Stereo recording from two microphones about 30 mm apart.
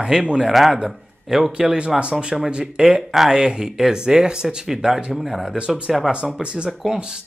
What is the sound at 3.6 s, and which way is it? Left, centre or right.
Speech, centre.